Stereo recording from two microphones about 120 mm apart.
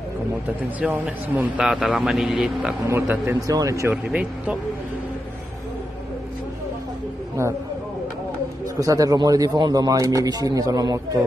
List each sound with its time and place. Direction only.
0.7 s a man's voice: 10° right (ahead or behind)
2.9 s speech: 20° right (ahead or behind)
3.3 s speech: 30° right (ahead or behind)
3.9 s a man's voice: 10° right (ahead or behind)
8.7 s speech: 30° right (ahead or behind)